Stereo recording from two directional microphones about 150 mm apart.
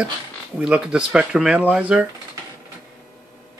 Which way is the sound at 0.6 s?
5° right (ahead or behind).